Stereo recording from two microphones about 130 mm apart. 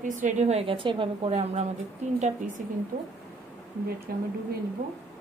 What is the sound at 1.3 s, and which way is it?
A woman's voice, 55° right (ahead or behind).